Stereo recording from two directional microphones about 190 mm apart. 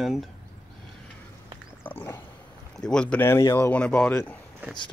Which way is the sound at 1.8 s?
10° left (ahead or behind).